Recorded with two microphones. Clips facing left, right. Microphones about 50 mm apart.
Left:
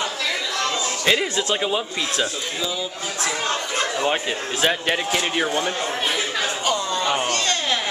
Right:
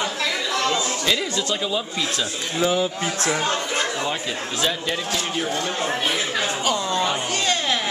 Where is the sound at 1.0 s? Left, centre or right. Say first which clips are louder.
Left 6 dB; left.